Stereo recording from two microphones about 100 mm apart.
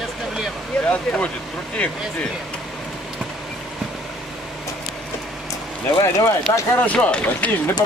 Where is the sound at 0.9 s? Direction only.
15° left (ahead or behind).